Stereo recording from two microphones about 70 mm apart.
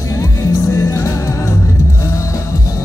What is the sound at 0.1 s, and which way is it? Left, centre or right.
Music, left.